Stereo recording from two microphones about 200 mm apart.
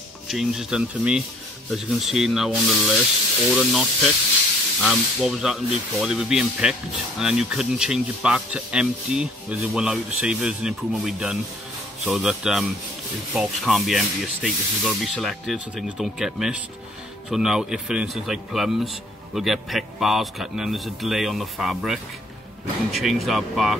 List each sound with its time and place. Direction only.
0.3 s speech: centre (ahead or behind)